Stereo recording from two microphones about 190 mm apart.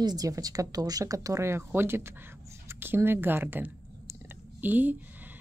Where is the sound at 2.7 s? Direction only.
10° right (ahead or behind).